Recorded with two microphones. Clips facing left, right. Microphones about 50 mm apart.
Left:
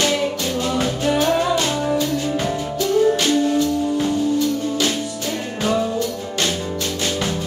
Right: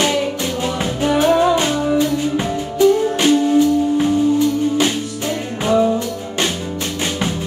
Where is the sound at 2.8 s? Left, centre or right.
Centre.